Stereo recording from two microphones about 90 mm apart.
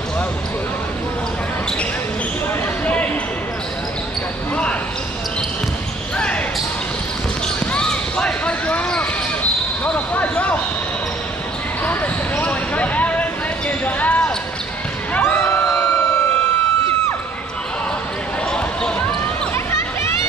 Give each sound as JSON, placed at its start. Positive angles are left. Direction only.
{"t": 2.8, "sound": "a sound", "side_deg": 15}
{"t": 6.1, "sound": "basketball bounce", "side_deg": 15}
{"t": 7.7, "sound": "basketball bounce", "side_deg": 10}
{"t": 11.8, "sound": "basketball bounce", "side_deg": 20}
{"t": 15.2, "sound": "a sound", "side_deg": 25}
{"t": 15.8, "sound": "siren", "side_deg": 30}
{"t": 18.5, "sound": "basketball bounce", "side_deg": 10}